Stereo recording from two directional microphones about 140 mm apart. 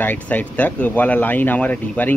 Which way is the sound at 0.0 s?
15° left (ahead or behind).